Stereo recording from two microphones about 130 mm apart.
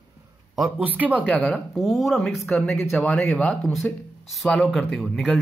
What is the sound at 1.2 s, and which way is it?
Speech, 10° left (ahead or behind).